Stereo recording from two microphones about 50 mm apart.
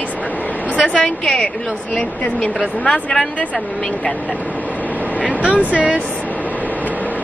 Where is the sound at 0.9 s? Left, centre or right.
Centre.